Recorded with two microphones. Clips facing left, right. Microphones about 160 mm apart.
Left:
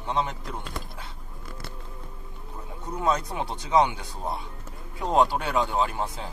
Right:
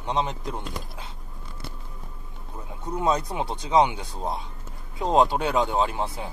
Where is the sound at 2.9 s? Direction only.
20° right (ahead or behind).